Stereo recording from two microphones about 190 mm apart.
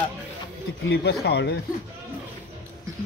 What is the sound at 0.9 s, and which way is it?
Speech, 60° left (ahead or behind).